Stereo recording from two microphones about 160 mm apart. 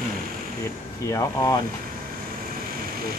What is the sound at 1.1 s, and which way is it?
Speech, 25° left (ahead or behind).